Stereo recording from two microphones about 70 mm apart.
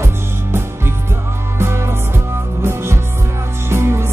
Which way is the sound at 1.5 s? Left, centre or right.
Right.